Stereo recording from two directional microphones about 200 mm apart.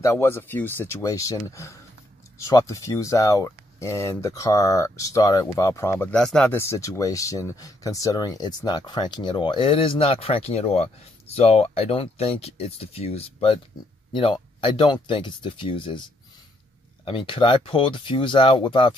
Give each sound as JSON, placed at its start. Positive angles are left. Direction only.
{"t": 0.0, "sound": "speech", "side_deg": 15}
{"t": 6.1, "sound": "speech", "side_deg": 5}
{"t": 17.0, "sound": "speech", "side_deg": 25}